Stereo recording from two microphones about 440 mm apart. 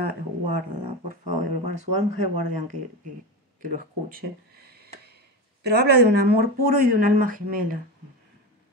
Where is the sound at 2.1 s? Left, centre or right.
Right.